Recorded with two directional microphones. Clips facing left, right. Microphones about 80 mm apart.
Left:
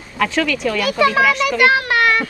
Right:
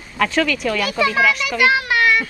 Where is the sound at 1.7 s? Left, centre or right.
Left.